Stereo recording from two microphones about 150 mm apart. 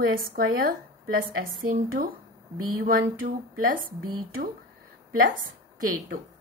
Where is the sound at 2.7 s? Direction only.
75° right (ahead or behind).